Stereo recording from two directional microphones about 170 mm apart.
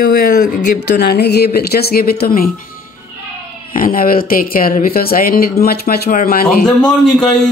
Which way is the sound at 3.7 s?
55° left (ahead or behind).